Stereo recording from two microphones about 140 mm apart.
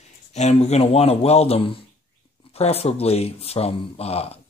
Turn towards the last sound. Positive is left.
turn(degrees=45)  # may be behind; listen again after turning